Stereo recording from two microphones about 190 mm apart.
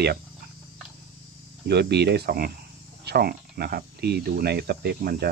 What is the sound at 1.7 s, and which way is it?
Speech, 60° right (ahead or behind).